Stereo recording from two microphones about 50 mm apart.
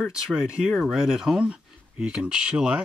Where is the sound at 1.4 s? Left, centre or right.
Right.